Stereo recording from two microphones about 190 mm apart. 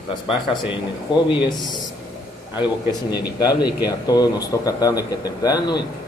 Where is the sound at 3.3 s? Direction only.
20° left (ahead or behind).